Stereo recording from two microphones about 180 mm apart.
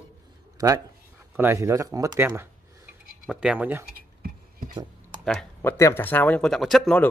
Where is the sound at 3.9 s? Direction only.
55° right (ahead or behind).